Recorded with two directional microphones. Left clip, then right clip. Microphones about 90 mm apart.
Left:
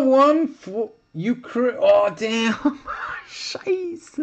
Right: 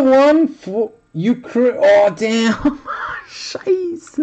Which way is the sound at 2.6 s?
Centre (ahead or behind).